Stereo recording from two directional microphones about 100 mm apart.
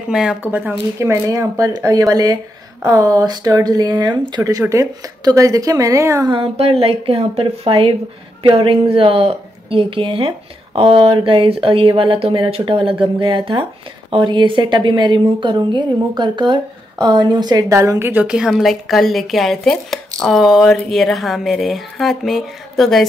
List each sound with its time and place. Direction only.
0.1 s speech: 5° right (ahead or behind)
0.4 s speech: 15° right (ahead or behind)
1.6 s a woman's voice: 35° right (ahead or behind)
4.5 s a woman's voice: 35° right (ahead or behind)
6.3 s a woman's voice: 70° right (ahead or behind); by 17.6 s 45° right (ahead or behind)
17.6 s speech: 30° right (ahead or behind)
18.2 s speech: 5° right (ahead or behind)